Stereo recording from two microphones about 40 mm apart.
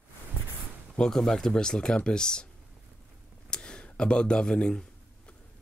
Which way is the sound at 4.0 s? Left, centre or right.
Left.